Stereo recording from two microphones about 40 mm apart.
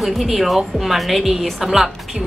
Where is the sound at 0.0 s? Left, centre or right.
Centre.